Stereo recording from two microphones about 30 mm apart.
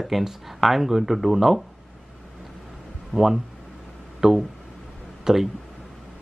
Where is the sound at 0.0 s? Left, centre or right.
Centre.